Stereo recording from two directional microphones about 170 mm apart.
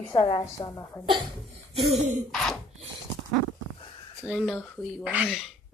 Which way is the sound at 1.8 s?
40° right (ahead or behind).